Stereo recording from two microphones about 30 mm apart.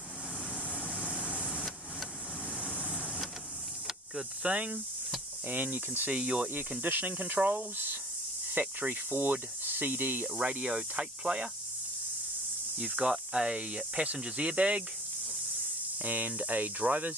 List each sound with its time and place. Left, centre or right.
1.2 s vehicle: left
2.6 s vehicle: left
3.8 s hiss: centre
4.4 s speech: right
5.5 s speech: right
6.1 s speech: right
6.8 s speech: right
10.4 s cricket: right
11.0 s speech: right
12.7 s speech: right
16.0 s speech: right